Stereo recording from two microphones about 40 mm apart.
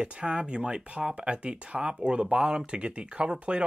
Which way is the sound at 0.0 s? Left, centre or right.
Right.